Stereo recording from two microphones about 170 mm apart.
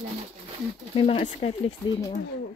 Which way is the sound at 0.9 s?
40° left (ahead or behind).